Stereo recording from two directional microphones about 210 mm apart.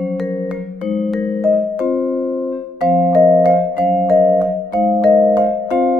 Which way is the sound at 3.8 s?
Centre (ahead or behind).